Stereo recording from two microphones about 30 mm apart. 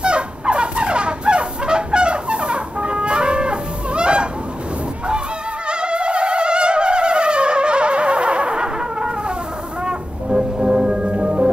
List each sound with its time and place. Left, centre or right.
0.0 s fowl: right
5.7 s mosquito: right
9.8 s music: right